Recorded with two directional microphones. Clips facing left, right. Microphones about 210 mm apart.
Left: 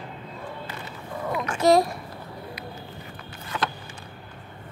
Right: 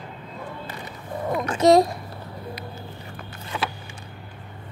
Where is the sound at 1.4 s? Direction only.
20° right (ahead or behind).